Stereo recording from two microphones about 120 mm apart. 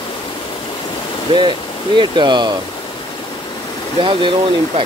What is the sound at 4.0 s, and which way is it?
Speech, 45° right (ahead or behind).